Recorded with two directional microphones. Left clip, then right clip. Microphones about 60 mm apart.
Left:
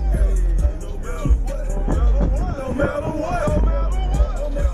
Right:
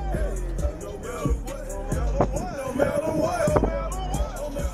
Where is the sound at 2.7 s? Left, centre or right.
Left.